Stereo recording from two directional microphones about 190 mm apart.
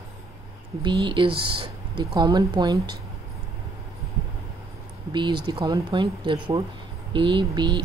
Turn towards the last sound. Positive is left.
turn(degrees=-25)  # may be behind; listen again after turning